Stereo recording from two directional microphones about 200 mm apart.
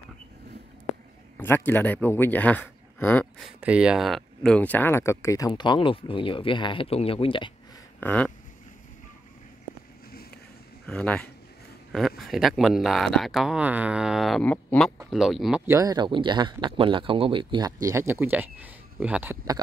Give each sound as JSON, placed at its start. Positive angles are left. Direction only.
{"t": 1.7, "sound": "speech", "side_deg": 10}
{"t": 8.0, "sound": "a sound", "side_deg": 5}
{"t": 10.9, "sound": "speech", "side_deg": 5}
{"t": 15.6, "sound": "speech", "side_deg": -15}